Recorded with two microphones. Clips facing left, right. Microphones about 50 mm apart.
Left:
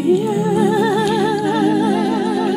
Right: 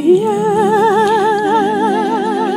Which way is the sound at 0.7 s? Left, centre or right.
Right.